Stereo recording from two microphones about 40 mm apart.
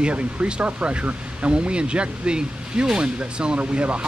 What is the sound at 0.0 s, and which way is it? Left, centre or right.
Speech, right.